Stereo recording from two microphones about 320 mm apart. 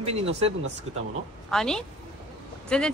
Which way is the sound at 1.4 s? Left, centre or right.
Centre.